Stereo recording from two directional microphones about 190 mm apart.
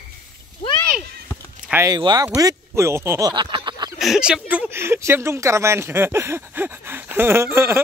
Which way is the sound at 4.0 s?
Centre (ahead or behind).